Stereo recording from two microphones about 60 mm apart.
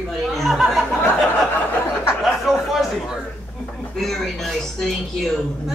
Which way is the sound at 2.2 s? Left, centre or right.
Centre.